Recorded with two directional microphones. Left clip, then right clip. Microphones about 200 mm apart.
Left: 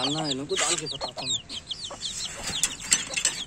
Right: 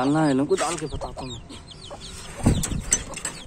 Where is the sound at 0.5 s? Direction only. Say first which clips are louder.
Right 3 dB; 5° left (ahead or behind).